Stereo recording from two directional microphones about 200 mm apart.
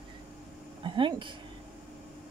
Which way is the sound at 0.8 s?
25° right (ahead or behind).